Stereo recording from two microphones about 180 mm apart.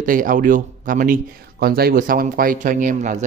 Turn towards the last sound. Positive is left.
turn(degrees=-45)  # may be behind; listen again after turning